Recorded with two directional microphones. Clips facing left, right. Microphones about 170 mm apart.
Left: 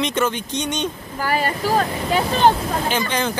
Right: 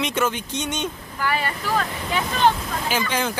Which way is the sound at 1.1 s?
35° left (ahead or behind).